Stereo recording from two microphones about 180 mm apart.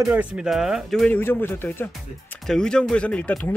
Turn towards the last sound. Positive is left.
turn(degrees=10)  # may be behind; listen again after turning